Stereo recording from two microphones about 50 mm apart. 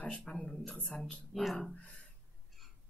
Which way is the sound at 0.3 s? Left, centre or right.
Centre.